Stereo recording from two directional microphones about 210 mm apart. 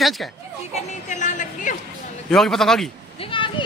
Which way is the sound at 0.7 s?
35° left (ahead or behind).